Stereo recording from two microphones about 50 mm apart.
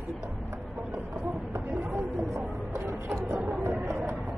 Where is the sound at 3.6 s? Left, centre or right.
Right.